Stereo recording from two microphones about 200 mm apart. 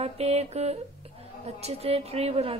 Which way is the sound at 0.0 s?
30° right (ahead or behind).